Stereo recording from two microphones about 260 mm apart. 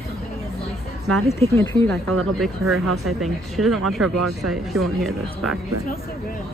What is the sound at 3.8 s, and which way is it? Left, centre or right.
Speech, right.